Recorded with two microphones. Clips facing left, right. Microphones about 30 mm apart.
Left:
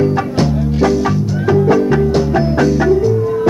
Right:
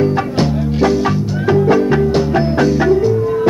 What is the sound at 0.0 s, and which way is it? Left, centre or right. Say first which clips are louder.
Music: even; right.